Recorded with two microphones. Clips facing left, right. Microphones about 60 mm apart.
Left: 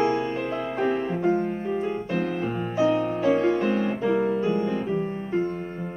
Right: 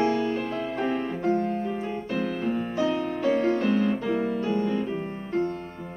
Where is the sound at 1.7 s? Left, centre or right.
Centre.